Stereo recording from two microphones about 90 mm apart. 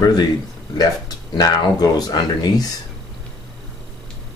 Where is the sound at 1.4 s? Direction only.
45° left (ahead or behind).